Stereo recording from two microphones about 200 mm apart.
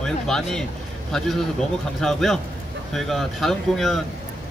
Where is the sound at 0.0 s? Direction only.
5° left (ahead or behind).